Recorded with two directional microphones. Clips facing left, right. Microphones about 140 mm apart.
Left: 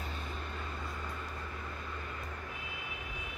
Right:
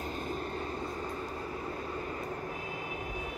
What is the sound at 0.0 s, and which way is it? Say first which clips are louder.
Vehicle: right 6 dB; 40° right (ahead or behind).